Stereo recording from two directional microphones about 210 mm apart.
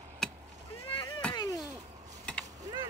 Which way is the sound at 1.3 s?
15° left (ahead or behind).